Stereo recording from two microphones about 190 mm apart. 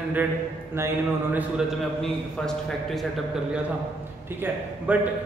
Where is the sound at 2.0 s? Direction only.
Centre (ahead or behind).